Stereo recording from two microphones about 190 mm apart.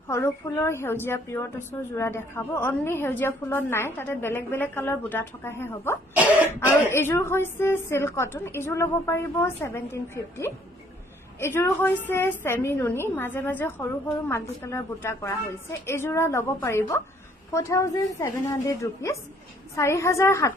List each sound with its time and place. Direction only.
0.1 s a woman's voice: 15° left (ahead or behind)
6.1 s cough: 10° right (ahead or behind)
6.9 s a woman's voice: 15° left (ahead or behind)